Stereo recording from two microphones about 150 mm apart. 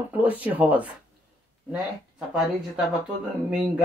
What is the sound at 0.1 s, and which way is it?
Speech, 10° right (ahead or behind).